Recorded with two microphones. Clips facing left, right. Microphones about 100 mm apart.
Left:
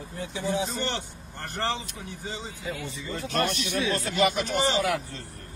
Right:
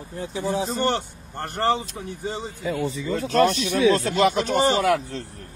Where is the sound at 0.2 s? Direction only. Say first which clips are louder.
Right 3 dB; 40° right (ahead or behind).